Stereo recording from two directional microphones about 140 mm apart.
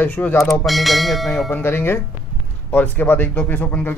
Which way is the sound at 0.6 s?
Centre (ahead or behind).